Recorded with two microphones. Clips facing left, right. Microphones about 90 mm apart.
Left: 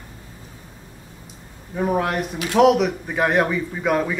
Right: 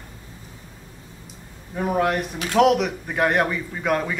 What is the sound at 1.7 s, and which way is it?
A man's voice, centre (ahead or behind).